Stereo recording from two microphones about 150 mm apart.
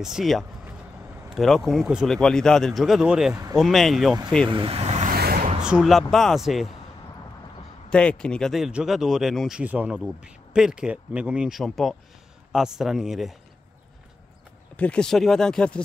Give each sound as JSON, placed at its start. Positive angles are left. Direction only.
{"t": 0.0, "sound": "speech", "side_deg": 0}
{"t": 4.5, "sound": "vehicle", "side_deg": -35}
{"t": 5.1, "sound": "a sound", "side_deg": -85}
{"t": 5.6, "sound": "speech", "side_deg": -5}
{"t": 7.9, "sound": "speech", "side_deg": 5}
{"t": 14.8, "sound": "speech", "side_deg": 5}